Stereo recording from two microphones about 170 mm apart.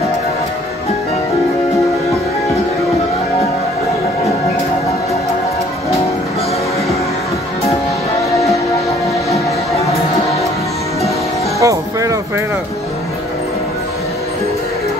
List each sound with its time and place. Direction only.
11.6 s music: 20° right (ahead or behind)